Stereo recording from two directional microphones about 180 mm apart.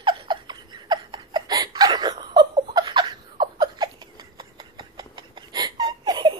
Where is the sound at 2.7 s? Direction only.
25° right (ahead or behind).